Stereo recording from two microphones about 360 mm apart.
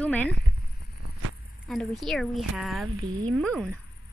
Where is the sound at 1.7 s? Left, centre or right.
Centre.